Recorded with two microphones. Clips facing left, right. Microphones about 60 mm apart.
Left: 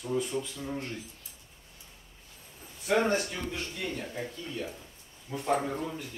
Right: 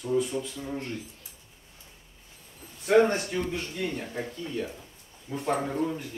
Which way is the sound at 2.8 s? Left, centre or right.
Right.